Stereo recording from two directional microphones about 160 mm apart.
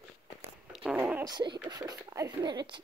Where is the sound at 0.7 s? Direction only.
5° right (ahead or behind).